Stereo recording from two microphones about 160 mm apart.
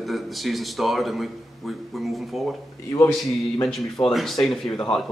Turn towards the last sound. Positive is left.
turn(degrees=5)  # may be behind; listen again after turning